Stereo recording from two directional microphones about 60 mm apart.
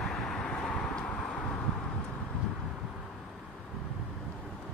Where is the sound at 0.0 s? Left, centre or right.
Centre.